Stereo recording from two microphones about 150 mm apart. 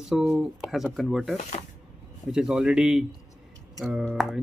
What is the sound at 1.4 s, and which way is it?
Speech, 50° left (ahead or behind).